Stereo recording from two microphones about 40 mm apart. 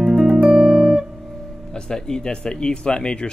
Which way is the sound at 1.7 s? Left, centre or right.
Centre.